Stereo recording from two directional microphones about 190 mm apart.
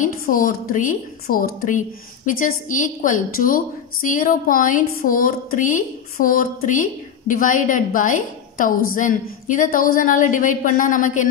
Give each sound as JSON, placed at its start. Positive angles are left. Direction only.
{"t": 0.0, "sound": "a woman's voice", "side_deg": 45}